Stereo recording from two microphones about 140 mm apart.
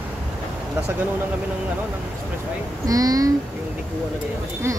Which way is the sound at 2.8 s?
25° right (ahead or behind).